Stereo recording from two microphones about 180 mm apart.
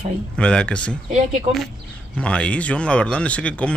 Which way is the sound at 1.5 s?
40° right (ahead or behind).